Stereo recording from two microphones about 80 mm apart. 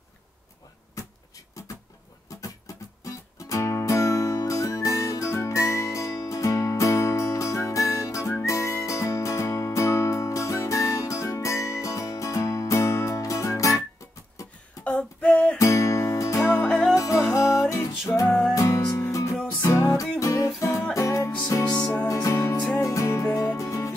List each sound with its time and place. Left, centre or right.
1.0 s a sound: left
3.0 s music: left
14.9 s a sound: centre
15.5 s music: left
16.6 s music: centre
16.9 s music: left
21.6 s music: left
22.0 s music: left